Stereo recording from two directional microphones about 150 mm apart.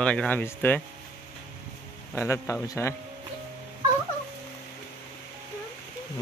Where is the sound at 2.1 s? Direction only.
20° left (ahead or behind).